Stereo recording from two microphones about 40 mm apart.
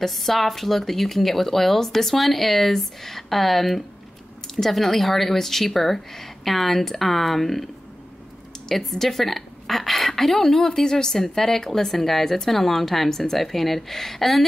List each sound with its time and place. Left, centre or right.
0.0 s speech: centre